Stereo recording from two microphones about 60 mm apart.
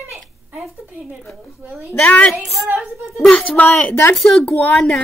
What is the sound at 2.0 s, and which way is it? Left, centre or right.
Speech, left.